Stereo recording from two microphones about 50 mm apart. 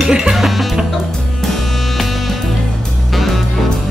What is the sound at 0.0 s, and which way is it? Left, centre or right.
Music, centre.